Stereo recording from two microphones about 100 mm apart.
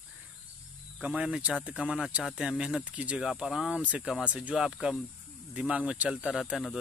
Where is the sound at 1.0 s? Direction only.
10° right (ahead or behind).